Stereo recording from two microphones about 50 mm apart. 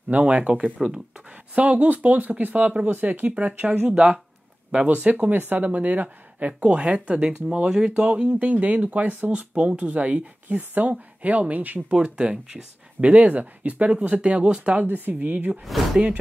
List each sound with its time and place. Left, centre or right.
0.1 s speech: right
3.9 s speech: right
4.6 s speech: right
12.0 s speech: right
14.9 s speech: right
15.6 s speech: centre